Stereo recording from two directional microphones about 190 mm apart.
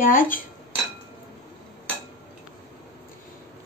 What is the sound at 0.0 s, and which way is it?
Speech, 45° left (ahead or behind).